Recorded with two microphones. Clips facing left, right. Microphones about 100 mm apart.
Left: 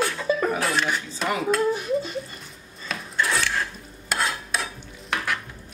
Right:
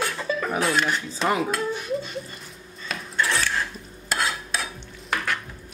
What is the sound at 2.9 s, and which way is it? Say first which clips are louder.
Filing: even; centre (ahead or behind).